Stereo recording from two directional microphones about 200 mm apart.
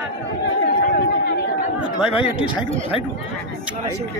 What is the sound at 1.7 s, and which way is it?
Chatter, 5° right (ahead or behind).